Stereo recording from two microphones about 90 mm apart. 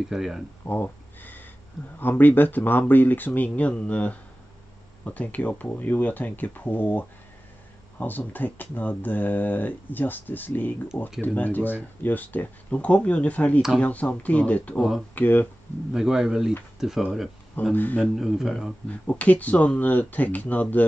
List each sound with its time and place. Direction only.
0.1 s speech: 5° right (ahead or behind)
0.8 s a sound: 20° left (ahead or behind)
2.0 s speech: 20° left (ahead or behind)
15.9 s speech: 5° right (ahead or behind)
17.7 s speech: 20° left (ahead or behind)
18.0 s speech: 5° right (ahead or behind)
18.9 s speech: 15° left (ahead or behind)